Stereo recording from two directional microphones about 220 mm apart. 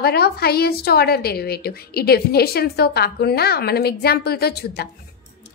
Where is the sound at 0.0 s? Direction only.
45° left (ahead or behind).